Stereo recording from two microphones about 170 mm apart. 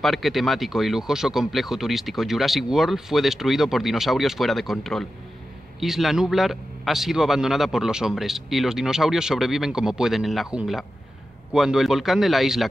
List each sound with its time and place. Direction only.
0.0 s a man's voice: centre (ahead or behind)